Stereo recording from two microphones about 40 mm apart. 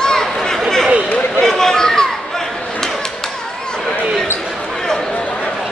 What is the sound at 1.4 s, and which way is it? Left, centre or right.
Chatter, centre.